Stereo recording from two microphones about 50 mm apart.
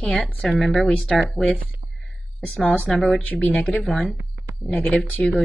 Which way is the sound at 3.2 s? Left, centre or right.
Left.